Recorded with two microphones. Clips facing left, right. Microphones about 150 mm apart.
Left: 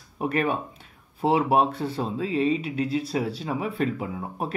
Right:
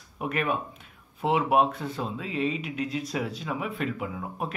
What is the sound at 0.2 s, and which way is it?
Speech, 30° left (ahead or behind).